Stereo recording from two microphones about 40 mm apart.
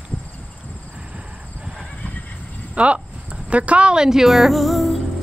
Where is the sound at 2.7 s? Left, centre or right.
Right.